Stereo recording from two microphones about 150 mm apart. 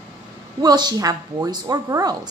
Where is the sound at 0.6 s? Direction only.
25° right (ahead or behind).